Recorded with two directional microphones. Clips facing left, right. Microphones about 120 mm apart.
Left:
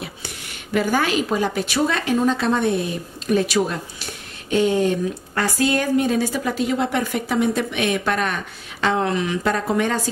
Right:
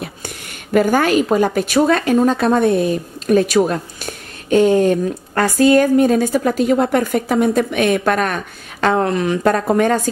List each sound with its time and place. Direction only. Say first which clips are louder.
0.7 s a woman's voice: right 6 dB; 50° right (ahead or behind)